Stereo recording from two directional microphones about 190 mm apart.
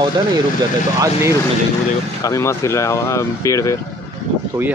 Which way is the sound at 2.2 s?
15° left (ahead or behind).